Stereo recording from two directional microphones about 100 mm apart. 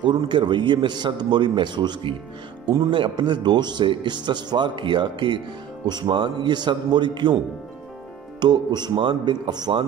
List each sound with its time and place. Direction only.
0.0 s speech: 50° right (ahead or behind)
8.4 s speech: 45° right (ahead or behind)